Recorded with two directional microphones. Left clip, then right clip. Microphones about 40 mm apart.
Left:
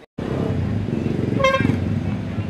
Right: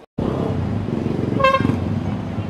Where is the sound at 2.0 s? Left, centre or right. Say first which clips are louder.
Right 1 dB; centre.